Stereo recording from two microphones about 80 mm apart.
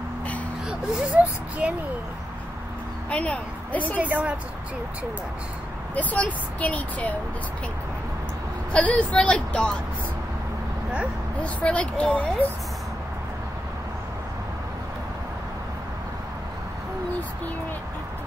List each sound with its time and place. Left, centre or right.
0.7 s a child's voice: centre
3.1 s speech: centre
4.0 s a woman's voice: centre
5.9 s speech: centre
8.7 s a woman's voice: centre
11.4 s a woman's voice: centre